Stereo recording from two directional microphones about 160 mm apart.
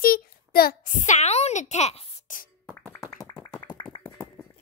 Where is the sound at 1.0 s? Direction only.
45° left (ahead or behind).